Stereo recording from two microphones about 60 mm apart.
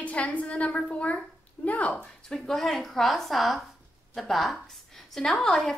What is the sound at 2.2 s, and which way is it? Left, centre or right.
A woman's voice, centre.